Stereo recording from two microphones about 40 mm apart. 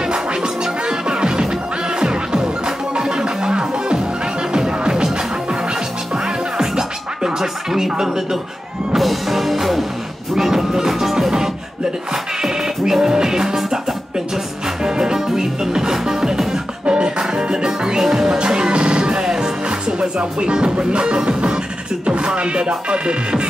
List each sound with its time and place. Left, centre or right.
0.0 s music: right
16.8 s music: right